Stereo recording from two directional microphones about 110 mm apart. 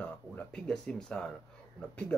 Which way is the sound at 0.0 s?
10° left (ahead or behind).